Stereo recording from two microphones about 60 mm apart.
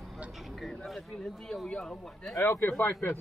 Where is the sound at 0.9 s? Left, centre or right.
Centre.